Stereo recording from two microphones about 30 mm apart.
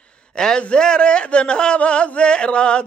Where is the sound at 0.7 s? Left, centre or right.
Left.